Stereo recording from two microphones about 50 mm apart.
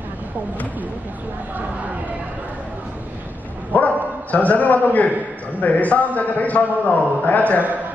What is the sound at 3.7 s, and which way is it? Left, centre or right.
A man's voice, left.